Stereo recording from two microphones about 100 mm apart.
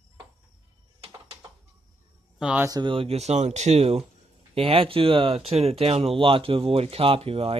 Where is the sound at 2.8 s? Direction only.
65° right (ahead or behind); by 4.0 s 90° right.